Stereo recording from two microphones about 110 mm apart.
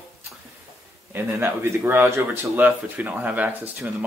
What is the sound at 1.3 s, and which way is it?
A man's voice, 20° right (ahead or behind).